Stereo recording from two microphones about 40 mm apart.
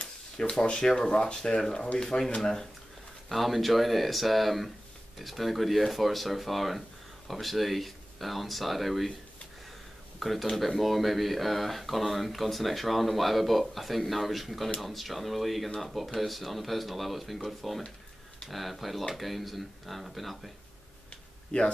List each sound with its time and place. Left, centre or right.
0.4 s speech: left
3.3 s speech: centre
10.1 s speech: centre
21.5 s speech: left